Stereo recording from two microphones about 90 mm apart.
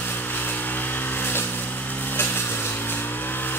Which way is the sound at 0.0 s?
20° left (ahead or behind).